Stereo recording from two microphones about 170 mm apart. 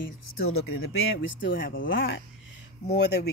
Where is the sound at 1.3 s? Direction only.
90° left.